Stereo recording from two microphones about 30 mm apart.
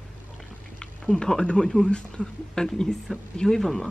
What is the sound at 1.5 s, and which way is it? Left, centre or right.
Speech, centre.